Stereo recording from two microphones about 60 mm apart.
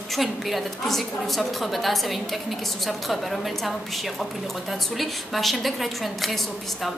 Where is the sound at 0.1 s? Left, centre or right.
Centre.